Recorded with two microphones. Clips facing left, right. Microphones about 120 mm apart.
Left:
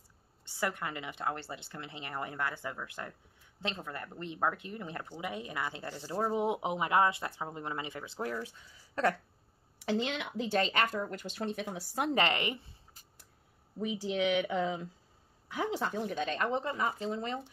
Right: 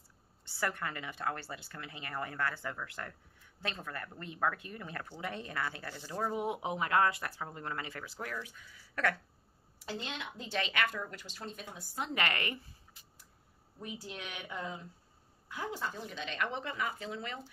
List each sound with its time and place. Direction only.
0.5 s speech: 20° left (ahead or behind)
9.8 s speech: 85° left
10.5 s speech: 35° left (ahead or behind); by 12.1 s 70° left (ahead or behind)
12.1 s speech: 25° left (ahead or behind)
13.7 s speech: 80° left
15.4 s a woman's voice: 75° left (ahead or behind); by 16.2 s 60° left (ahead or behind)
16.2 s speech: 40° left (ahead or behind)